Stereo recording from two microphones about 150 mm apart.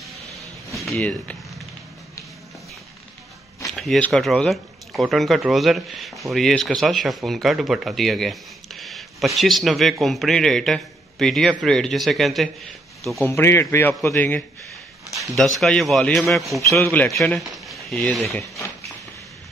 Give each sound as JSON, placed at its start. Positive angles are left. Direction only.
{"t": 0.7, "sound": "a sound", "side_deg": 5}
{"t": 3.7, "sound": "speech", "side_deg": 0}
{"t": 13.2, "sound": "a man's voice", "side_deg": 15}
{"t": 15.1, "sound": "speech", "side_deg": 0}
{"t": 16.8, "sound": "a man's voice", "side_deg": 15}
{"t": 17.6, "sound": "a sound", "side_deg": 5}